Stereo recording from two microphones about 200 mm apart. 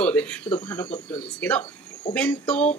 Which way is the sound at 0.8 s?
25° left (ahead or behind).